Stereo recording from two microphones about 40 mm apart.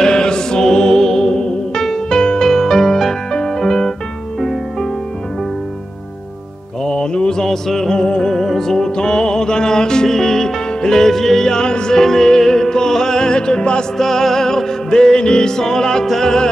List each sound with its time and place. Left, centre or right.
0.0 s music: centre
6.8 s music: centre
13.9 s music: centre